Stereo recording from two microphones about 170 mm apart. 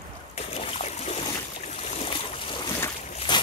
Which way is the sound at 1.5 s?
40° left (ahead or behind).